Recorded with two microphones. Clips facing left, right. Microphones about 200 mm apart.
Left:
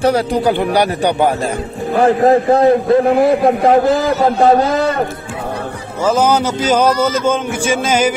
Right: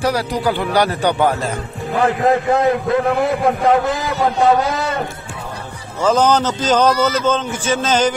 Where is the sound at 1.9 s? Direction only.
35° left (ahead or behind).